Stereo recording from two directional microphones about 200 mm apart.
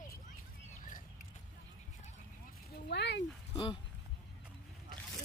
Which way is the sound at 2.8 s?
55° left (ahead or behind).